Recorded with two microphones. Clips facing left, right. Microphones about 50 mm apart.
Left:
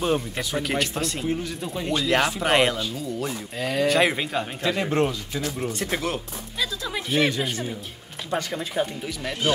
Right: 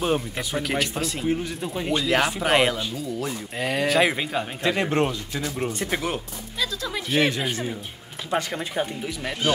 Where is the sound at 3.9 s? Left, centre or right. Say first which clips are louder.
Right 1 dB; centre.